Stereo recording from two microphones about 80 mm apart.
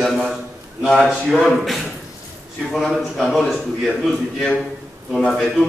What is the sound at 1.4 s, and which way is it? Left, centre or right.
A man's voice, centre.